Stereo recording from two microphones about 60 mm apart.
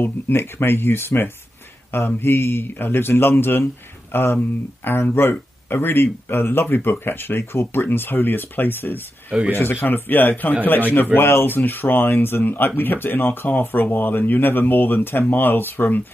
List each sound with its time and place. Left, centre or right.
0.0 s speech: left